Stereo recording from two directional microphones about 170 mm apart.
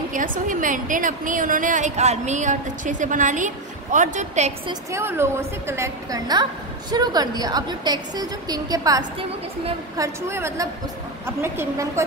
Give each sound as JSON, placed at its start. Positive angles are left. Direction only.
{"t": 0.1, "sound": "a woman's voice", "side_deg": -50}
{"t": 4.9, "sound": "a woman's voice", "side_deg": -15}